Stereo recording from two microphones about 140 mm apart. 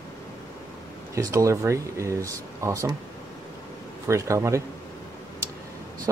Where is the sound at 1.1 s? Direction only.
20° right (ahead or behind).